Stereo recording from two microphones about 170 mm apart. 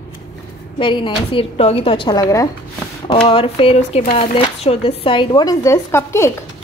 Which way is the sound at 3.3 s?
30° left (ahead or behind).